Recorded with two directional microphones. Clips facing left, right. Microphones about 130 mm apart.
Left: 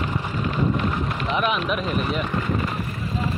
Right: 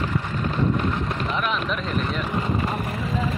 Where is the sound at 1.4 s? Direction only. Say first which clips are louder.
Left 5 dB; 15° left (ahead or behind).